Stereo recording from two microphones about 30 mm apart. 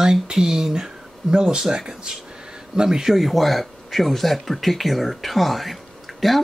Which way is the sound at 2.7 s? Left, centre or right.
Right.